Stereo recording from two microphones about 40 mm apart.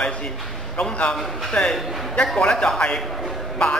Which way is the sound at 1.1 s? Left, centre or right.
Centre.